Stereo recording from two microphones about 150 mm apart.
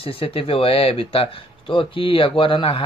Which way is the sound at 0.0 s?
40° left (ahead or behind).